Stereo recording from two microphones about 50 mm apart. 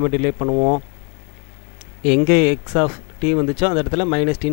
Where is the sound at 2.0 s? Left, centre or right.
Centre.